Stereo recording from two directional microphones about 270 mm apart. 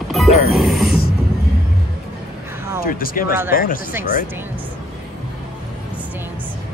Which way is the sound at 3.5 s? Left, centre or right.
Left.